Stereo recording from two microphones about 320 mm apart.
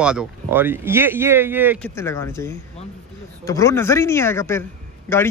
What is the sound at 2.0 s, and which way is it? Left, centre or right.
A man's voice, centre.